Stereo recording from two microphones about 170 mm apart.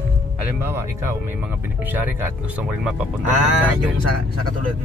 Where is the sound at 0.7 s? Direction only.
15° right (ahead or behind).